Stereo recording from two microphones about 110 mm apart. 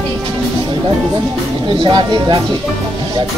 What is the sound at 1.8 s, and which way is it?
Speech, 45° right (ahead or behind).